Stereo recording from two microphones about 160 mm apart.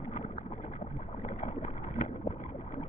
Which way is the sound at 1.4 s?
50° left (ahead or behind).